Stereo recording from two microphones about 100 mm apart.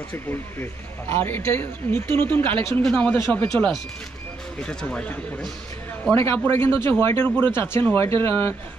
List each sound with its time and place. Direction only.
0.1 s speech: 25° left (ahead or behind)
2.8 s speech: 10° left (ahead or behind)
6.1 s speech: 25° left (ahead or behind)